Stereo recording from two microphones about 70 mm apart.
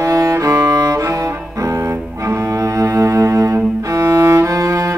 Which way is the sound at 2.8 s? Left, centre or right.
Right.